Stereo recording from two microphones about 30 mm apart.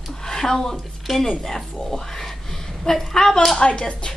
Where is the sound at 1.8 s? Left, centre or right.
Left.